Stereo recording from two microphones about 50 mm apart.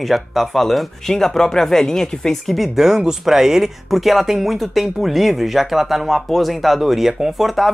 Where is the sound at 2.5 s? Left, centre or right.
Centre.